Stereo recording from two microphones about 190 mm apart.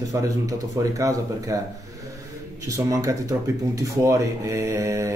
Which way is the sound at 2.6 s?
15° right (ahead or behind).